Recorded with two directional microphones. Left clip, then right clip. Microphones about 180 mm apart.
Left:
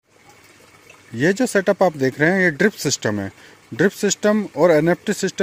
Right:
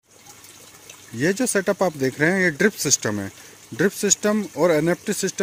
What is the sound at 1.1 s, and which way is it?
Speech, 25° left (ahead or behind).